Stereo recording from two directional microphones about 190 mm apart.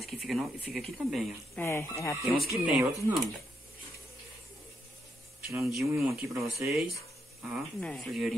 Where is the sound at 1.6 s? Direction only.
15° left (ahead or behind).